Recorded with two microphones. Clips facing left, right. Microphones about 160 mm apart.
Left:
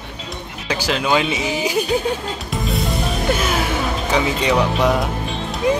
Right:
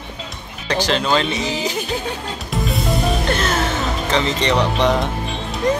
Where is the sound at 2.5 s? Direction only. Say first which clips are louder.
Right 2 dB; centre (ahead or behind).